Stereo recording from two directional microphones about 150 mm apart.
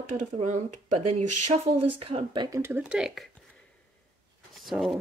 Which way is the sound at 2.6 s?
15° right (ahead or behind).